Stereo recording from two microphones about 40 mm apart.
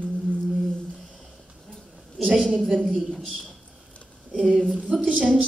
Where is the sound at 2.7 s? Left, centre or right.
Centre.